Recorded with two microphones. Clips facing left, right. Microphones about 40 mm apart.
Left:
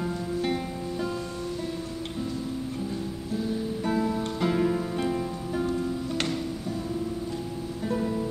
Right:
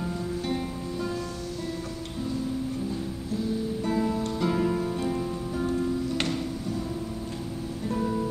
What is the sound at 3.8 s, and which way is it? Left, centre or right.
Music, centre.